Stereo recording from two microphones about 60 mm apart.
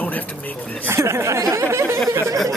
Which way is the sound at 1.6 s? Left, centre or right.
Right.